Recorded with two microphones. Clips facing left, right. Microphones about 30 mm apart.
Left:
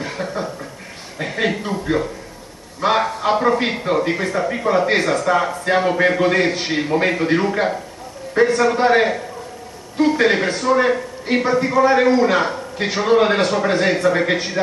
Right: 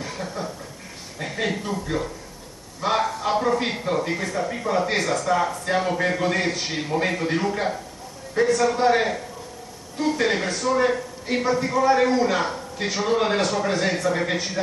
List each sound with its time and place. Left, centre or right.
0.0 s chuckle: left
1.1 s a man's voice: left